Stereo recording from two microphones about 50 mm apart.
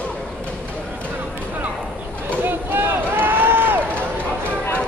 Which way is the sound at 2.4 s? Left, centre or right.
Right.